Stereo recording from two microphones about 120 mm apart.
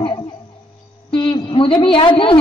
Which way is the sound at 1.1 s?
45° left (ahead or behind).